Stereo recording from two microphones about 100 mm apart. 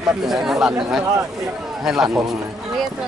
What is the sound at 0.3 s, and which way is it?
Speech, 5° right (ahead or behind).